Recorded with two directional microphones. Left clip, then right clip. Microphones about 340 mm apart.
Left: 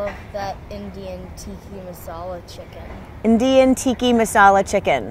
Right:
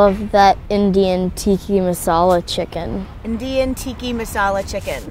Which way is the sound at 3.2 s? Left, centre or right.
Centre.